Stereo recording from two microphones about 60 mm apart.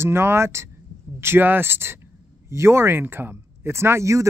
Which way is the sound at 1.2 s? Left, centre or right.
Right.